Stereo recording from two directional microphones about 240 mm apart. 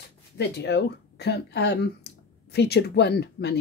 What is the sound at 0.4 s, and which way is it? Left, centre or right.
Speech, left.